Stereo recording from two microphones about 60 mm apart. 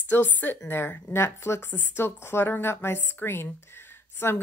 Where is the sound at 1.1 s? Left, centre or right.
Left.